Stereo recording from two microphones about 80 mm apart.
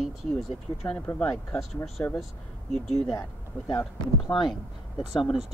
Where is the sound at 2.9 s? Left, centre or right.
Centre.